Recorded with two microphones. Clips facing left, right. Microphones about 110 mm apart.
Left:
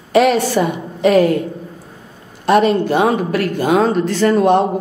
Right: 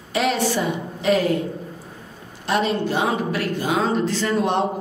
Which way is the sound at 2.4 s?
55° left (ahead or behind).